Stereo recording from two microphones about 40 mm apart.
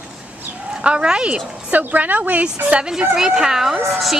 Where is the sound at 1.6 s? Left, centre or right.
Right.